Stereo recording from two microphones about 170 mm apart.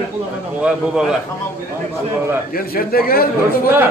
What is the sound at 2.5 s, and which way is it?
Speech, 60° left (ahead or behind).